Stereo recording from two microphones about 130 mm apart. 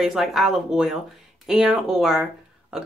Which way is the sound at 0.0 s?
5° right (ahead or behind).